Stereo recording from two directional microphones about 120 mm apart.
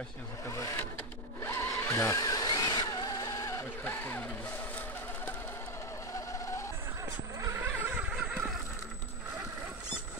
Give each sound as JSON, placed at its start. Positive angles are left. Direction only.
{"t": 0.5, "sound": "sewing machine", "side_deg": 25}
{"t": 1.4, "sound": "vehicle", "side_deg": 20}
{"t": 7.4, "sound": "vehicle", "side_deg": -25}
{"t": 7.8, "sound": "vehicle", "side_deg": -10}